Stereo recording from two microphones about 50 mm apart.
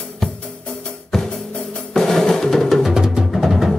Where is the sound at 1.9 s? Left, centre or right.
Centre.